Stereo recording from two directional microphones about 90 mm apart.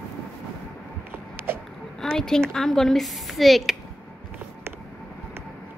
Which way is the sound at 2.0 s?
5° left (ahead or behind).